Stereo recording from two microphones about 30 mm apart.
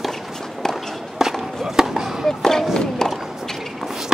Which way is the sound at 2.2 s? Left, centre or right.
Centre.